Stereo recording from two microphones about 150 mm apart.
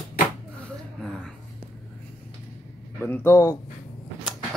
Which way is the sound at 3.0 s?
15° left (ahead or behind).